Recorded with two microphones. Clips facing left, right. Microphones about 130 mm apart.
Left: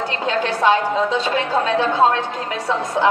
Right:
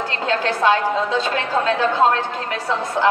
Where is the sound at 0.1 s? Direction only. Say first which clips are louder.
Right 1 dB; 20° left (ahead or behind).